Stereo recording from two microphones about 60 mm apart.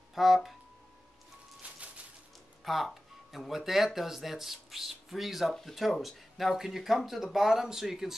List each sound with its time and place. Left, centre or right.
0.1 s speech: centre
1.6 s a sound: right
2.6 s speech: centre